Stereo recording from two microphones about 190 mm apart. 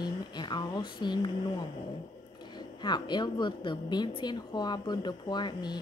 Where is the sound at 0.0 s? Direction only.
25° left (ahead or behind).